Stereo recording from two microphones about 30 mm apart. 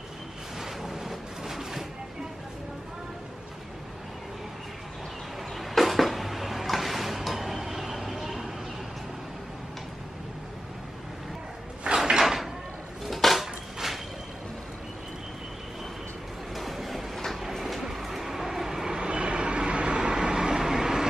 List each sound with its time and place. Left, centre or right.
0.6 s a sound: centre
5.6 s music: centre
11.9 s drawer open or close: right
12.2 s a sound: centre
13.0 s dishes: centre
13.4 s a sound: centre
16.5 s train: centre
17.9 s vehicle: centre
18.9 s train: right